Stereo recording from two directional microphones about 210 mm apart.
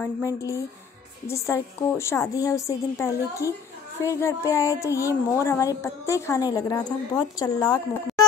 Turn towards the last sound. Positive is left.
turn(degrees=20)  # may be behind; listen again after turning